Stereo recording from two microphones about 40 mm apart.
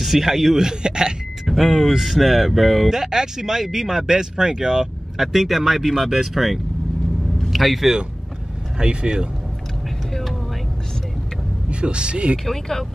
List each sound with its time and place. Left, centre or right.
0.0 s speech: centre
0.6 s speech: centre
1.4 s speech: centre
8.7 s speech: right
11.7 s speech: right
12.4 s speech: centre